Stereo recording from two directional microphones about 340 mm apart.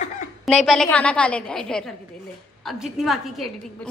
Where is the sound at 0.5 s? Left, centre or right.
Centre.